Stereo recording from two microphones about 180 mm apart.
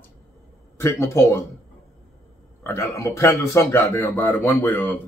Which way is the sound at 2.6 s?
15° left (ahead or behind).